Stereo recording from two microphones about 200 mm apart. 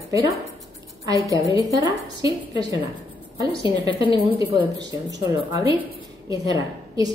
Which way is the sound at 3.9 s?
15° right (ahead or behind).